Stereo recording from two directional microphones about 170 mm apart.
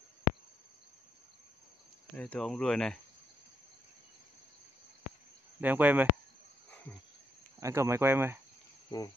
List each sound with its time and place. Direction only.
2.1 s speech: 5° left (ahead or behind)
5.6 s speech: 10° right (ahead or behind)
7.6 s speech: 15° right (ahead or behind)
8.9 s cricket: 25° left (ahead or behind)